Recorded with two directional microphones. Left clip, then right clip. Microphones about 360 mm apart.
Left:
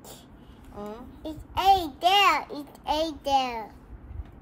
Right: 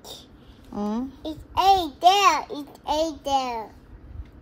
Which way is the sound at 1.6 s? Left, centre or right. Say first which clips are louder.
Right 3 dB; centre.